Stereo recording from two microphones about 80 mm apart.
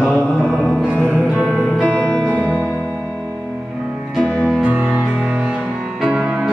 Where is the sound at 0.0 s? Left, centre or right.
Centre.